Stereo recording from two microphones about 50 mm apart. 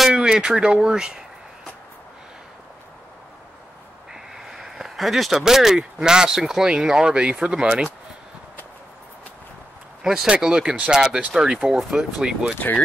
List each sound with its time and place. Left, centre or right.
0.1 s speech: centre
4.1 s a sound: centre
5.4 s speech: centre
10.0 s speech: centre
11.6 s speech: centre
12.0 s speech: centre